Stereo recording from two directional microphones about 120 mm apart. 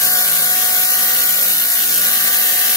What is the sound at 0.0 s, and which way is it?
Mains hum, 25° left (ahead or behind).